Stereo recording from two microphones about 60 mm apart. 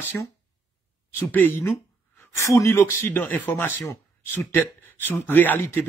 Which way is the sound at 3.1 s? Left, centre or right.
Left.